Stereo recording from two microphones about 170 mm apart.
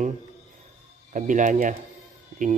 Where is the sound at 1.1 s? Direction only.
50° right (ahead or behind).